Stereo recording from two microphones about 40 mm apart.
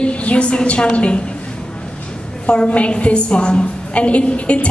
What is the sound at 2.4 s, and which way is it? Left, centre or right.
A woman's voice, left.